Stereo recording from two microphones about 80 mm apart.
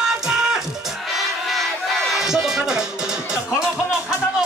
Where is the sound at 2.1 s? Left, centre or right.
Centre.